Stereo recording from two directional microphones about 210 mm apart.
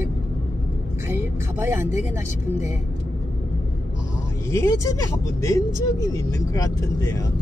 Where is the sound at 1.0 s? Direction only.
10° right (ahead or behind).